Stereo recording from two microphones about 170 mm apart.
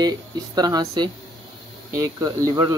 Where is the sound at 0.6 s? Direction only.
25° right (ahead or behind).